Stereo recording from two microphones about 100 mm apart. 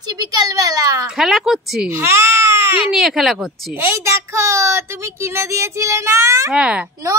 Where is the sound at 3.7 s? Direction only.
25° right (ahead or behind).